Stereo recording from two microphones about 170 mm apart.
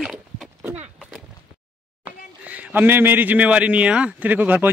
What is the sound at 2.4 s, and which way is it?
A man's voice, 10° right (ahead or behind).